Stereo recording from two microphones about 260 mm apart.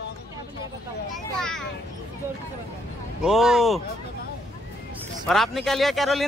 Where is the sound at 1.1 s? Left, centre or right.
Centre.